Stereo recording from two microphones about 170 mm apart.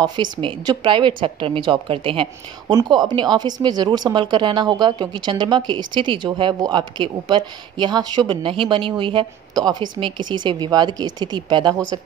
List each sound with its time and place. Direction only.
0.0 s a woman's voice: 25° right (ahead or behind)